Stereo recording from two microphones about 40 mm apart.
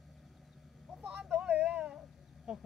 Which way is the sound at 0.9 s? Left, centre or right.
Right.